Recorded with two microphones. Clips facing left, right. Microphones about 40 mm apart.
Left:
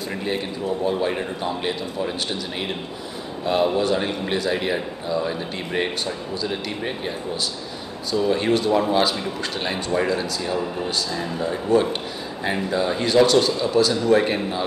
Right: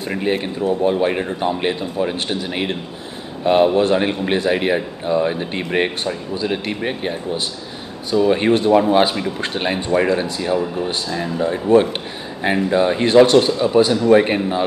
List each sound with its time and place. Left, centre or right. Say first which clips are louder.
0.1 s a man's voice: right 7 dB; right
12.7 s speech: right 6 dB; right